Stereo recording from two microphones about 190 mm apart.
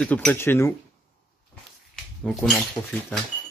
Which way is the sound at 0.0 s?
5° left (ahead or behind).